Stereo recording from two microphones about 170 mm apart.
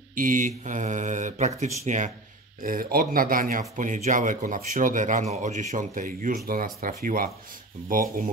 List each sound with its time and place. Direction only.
0.1 s speech: 50° right (ahead or behind)